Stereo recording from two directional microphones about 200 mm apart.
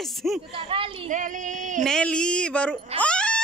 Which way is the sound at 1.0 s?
40° right (ahead or behind).